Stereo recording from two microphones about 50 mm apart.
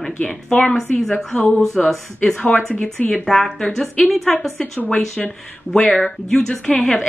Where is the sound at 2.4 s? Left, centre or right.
Left.